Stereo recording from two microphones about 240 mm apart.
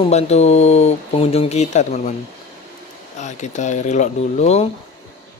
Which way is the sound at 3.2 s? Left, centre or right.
Left.